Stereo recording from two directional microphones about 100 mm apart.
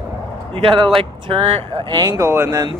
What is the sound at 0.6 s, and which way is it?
Speech, 60° right (ahead or behind).